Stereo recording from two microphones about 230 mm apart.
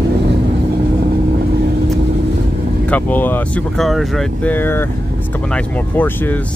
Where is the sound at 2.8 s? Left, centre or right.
Centre.